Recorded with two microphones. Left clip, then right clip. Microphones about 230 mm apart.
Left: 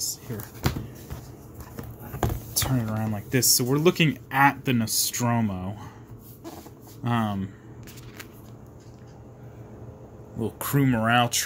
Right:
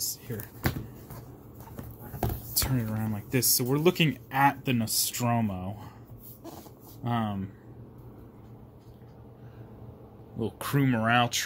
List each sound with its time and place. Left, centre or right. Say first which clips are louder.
0.1 s a sound: left 3 dB; centre
2.5 s speech: left 4 dB; centre
7.0 s speech: left 4 dB; centre
10.4 s speech: left 3 dB; centre